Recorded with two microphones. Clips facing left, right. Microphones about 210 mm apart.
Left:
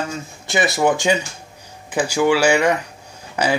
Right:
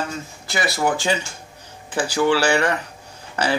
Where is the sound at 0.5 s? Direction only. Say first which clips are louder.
Left 4 dB; 20° left (ahead or behind).